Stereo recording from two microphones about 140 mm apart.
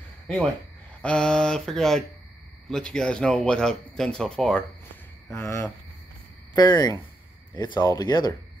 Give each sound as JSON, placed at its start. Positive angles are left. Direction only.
{"t": 1.0, "sound": "speech", "side_deg": 5}
{"t": 5.3, "sound": "speech", "side_deg": 20}